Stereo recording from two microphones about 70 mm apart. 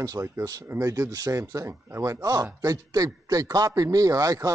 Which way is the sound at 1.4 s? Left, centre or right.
Right.